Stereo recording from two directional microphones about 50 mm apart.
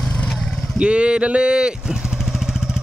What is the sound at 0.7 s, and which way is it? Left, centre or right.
Vehicle, right.